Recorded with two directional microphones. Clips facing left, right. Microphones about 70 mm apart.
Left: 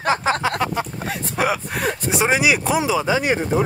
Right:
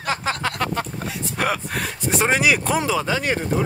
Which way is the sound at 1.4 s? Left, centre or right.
Centre.